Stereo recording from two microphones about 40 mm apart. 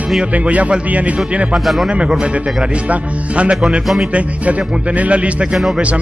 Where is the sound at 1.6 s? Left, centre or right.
Centre.